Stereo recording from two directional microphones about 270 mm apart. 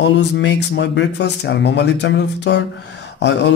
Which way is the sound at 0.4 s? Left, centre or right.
Left.